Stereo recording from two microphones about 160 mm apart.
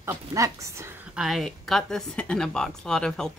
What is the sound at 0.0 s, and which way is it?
Speech, 20° right (ahead or behind).